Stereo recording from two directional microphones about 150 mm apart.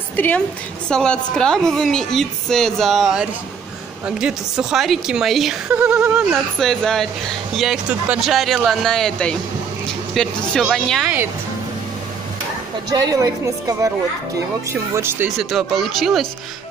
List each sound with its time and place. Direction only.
0.1 s a woman's voice: 10° left (ahead or behind)
12.9 s a woman's voice: 25° right (ahead or behind)
15.3 s a woman's voice: centre (ahead or behind)